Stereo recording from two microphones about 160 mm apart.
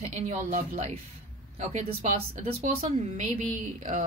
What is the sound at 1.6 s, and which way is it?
Speech, 45° right (ahead or behind).